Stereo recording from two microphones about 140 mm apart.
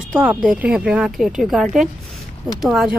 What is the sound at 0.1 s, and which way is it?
Speech, 10° right (ahead or behind).